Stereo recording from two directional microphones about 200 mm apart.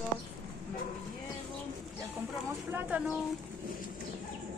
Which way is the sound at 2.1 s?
10° right (ahead or behind).